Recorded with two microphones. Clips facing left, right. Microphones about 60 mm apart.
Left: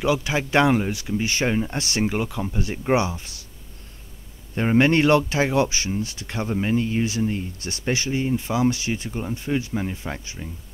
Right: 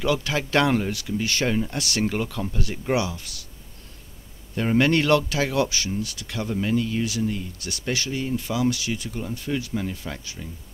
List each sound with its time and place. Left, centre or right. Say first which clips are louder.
0.0 s speech: left 2 dB; centre
2.0 s speech: left 1 dB; centre
4.6 s speech: left 2 dB; left